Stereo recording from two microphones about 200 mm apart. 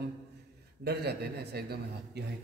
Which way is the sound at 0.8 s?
55° right (ahead or behind).